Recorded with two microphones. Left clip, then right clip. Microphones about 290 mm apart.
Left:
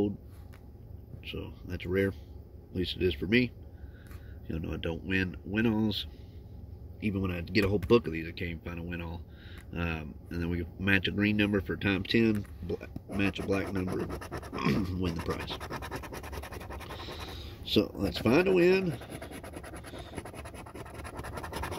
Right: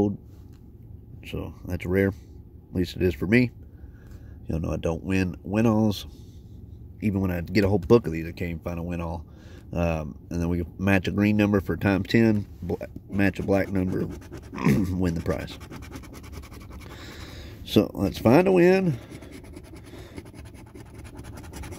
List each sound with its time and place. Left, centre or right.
1.3 s speech: right
4.5 s speech: centre
7.2 s speech: right
14.1 s scratch: centre
14.6 s speech: right
17.1 s speech: right